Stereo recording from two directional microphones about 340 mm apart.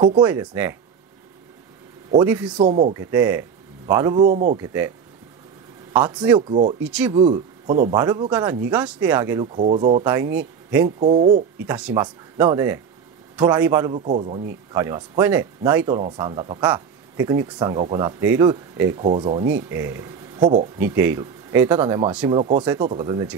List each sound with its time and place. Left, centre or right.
0.0 s speech: centre
2.1 s speech: centre; by 4.6 s right
4.6 s speech: centre
5.9 s speech: centre
6.8 s speech: centre
7.2 s speech: centre
11.7 s speech: centre; by 14.6 s right
14.7 s speech: centre
22.4 s speech: centre